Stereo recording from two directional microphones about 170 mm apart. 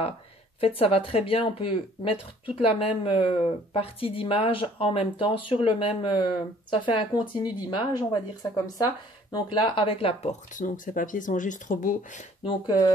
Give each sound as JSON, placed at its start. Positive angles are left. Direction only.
{"t": 0.6, "sound": "speech", "side_deg": 35}
{"t": 10.5, "sound": "speech", "side_deg": 50}
{"t": 12.4, "sound": "speech", "side_deg": 25}